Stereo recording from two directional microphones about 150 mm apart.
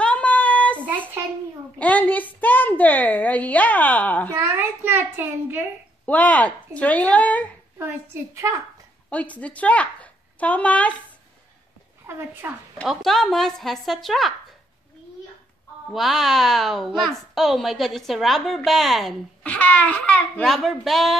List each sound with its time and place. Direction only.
0.0 s child singing: 10° left (ahead or behind)
1.8 s a sound: 10° left (ahead or behind)
4.3 s a sound: 15° right (ahead or behind)
6.0 s speech: 10° left (ahead or behind)
7.8 s a sound: 20° right (ahead or behind)
9.1 s speech: 10° left (ahead or behind)
12.1 s speech: 15° right (ahead or behind)
12.8 s a woman's voice: centre (ahead or behind)
15.9 s a woman's voice: centre (ahead or behind)